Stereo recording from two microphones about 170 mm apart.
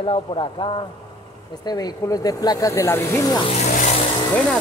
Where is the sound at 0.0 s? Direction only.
30° left (ahead or behind).